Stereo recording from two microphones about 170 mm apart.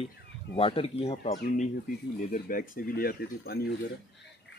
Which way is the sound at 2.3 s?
55° left (ahead or behind).